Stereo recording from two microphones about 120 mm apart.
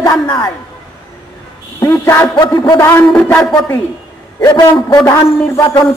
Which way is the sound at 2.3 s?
35° left (ahead or behind).